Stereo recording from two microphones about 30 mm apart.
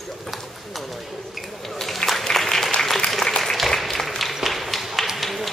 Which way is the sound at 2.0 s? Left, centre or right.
Left.